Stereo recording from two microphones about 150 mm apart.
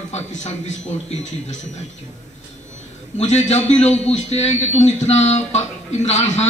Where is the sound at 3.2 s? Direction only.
50° left (ahead or behind).